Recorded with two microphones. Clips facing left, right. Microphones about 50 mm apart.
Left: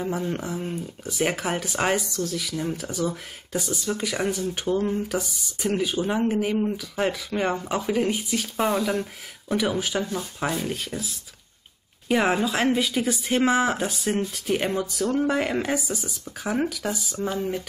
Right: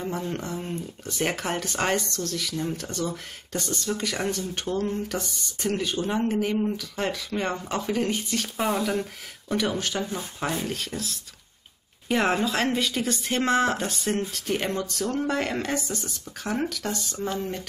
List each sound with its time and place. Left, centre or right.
0.0 s speech: centre